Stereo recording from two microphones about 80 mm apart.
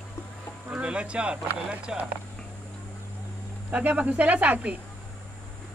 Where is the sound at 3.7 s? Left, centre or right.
Centre.